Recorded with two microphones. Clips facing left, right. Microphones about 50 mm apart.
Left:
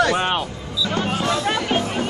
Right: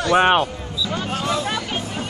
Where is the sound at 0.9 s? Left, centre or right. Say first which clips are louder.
Left 4 dB; left.